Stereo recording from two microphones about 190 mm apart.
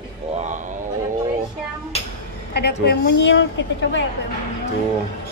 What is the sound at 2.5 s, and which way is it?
A woman's voice, 60° left (ahead or behind).